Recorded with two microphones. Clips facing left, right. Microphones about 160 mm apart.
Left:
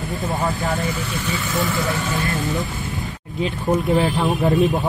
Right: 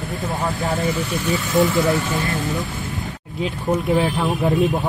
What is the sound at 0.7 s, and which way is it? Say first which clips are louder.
Speech: right 2 dB; 20° right (ahead or behind).